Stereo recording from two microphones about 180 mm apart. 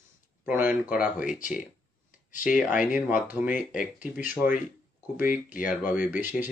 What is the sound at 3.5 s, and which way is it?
Speech, 45° left (ahead or behind).